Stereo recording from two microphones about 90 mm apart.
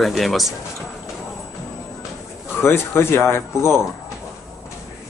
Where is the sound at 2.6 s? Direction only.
30° left (ahead or behind).